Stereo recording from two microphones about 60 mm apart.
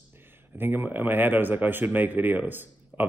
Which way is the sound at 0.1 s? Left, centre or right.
Right.